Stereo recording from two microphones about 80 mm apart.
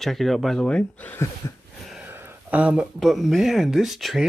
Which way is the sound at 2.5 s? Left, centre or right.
Centre.